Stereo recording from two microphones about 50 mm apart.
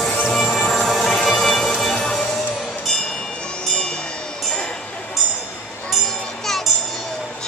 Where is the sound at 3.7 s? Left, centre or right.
Centre.